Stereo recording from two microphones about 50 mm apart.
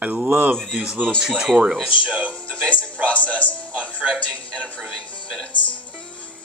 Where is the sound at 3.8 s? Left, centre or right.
Right.